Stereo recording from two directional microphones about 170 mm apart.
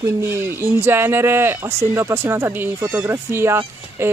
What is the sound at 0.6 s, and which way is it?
Speech, 15° right (ahead or behind).